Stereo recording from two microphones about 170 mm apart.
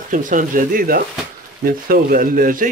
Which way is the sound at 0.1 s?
50° right (ahead or behind).